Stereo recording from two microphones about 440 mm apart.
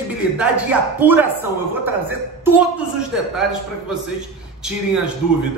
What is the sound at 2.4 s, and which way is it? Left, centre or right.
A man's voice, centre.